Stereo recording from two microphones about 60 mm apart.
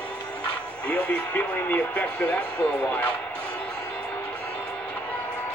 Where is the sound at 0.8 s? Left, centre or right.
Left.